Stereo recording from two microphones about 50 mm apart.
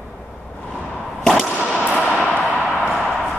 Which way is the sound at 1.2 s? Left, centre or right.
Centre.